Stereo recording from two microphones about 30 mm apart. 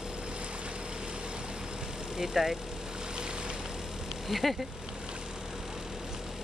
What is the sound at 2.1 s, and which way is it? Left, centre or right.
Speech, centre.